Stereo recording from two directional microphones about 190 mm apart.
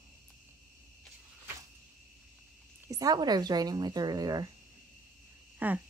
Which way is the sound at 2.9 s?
20° right (ahead or behind).